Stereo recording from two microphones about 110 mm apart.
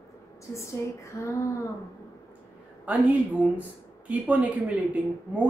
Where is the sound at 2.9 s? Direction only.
15° right (ahead or behind).